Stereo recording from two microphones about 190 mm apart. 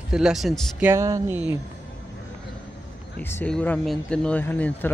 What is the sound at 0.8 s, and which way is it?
Speech, 15° right (ahead or behind).